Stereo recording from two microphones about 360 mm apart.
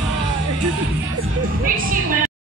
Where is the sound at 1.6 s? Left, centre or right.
Right.